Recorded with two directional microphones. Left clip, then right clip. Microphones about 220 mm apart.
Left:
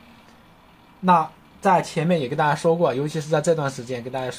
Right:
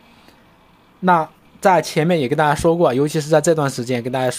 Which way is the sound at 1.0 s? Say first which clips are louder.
Right 2 dB; 45° right (ahead or behind).